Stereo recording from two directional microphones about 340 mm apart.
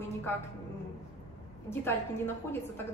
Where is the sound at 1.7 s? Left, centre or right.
Centre.